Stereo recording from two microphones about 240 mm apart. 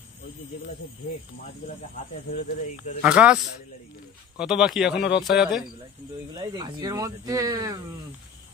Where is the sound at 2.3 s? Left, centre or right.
Left.